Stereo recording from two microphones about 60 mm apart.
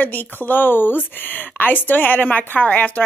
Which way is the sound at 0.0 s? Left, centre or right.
Left.